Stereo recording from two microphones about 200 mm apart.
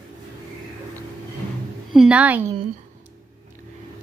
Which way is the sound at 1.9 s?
5° right (ahead or behind).